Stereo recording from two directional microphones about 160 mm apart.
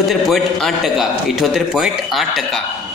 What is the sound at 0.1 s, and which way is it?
A man's voice, centre (ahead or behind).